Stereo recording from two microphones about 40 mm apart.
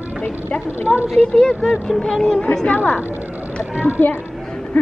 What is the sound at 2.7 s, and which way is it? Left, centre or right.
Speech, left.